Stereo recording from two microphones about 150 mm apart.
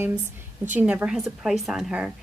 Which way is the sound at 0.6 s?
10° right (ahead or behind).